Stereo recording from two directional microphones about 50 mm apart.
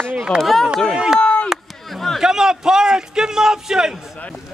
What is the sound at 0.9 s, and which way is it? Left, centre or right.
Speech, centre.